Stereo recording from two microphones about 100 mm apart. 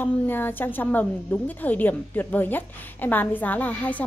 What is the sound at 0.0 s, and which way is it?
A woman's voice, 20° left (ahead or behind).